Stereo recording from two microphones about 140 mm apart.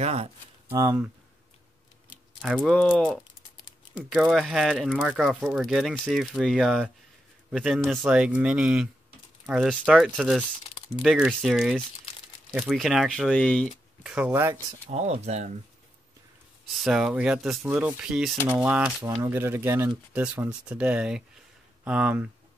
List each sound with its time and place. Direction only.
0.0 s speech: 45° right (ahead or behind)
0.7 s speech: 20° right (ahead or behind)
2.4 s speech: 5° left (ahead or behind)
3.9 s speech: 5° right (ahead or behind)
14.0 s speech: 10° right (ahead or behind)
14.9 s speech: 50° right (ahead or behind)
16.7 s speech: centre (ahead or behind)